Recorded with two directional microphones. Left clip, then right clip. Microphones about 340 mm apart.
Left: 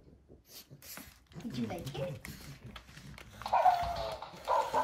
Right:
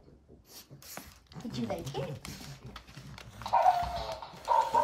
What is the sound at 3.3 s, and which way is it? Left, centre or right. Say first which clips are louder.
Dog: right 2 dB; centre.